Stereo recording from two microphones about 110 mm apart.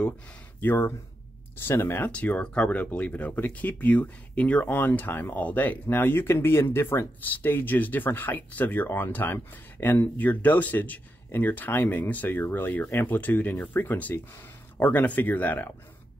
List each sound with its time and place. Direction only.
0.6 s speech: 20° left (ahead or behind)